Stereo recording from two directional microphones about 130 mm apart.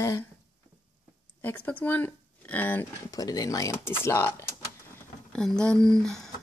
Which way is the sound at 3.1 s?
30° left (ahead or behind).